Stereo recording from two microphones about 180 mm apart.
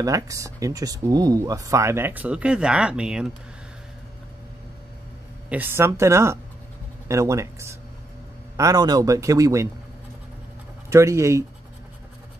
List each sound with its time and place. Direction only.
0.0 s speech: 20° right (ahead or behind)
5.5 s speech: 10° right (ahead or behind)
10.9 s speech: 15° right (ahead or behind)